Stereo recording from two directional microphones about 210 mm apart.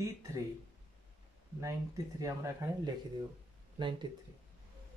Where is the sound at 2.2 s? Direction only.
15° right (ahead or behind).